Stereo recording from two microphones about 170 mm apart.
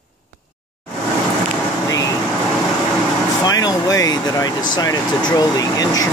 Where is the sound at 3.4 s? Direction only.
25° left (ahead or behind).